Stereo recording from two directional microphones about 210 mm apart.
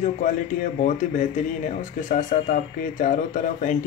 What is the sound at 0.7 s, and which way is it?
Speech, 35° left (ahead or behind).